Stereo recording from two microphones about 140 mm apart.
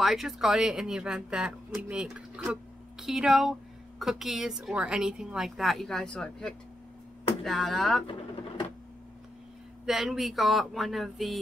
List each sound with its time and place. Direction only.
0.0 s speech: centre (ahead or behind)
8.1 s sewing machine: 40° left (ahead or behind)
9.8 s speech: centre (ahead or behind)